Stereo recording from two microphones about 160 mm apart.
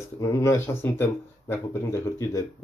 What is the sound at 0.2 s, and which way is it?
Speech, 20° left (ahead or behind).